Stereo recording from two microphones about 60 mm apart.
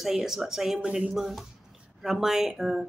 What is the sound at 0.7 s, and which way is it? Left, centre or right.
Speech, centre.